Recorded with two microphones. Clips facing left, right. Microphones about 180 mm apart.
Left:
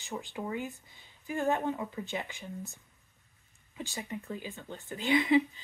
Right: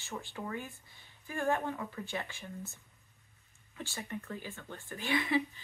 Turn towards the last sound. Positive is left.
turn(degrees=20)  # may be behind; listen again after turning